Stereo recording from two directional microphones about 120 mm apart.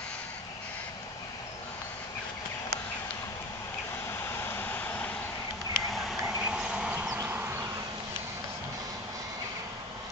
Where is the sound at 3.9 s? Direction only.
20° left (ahead or behind).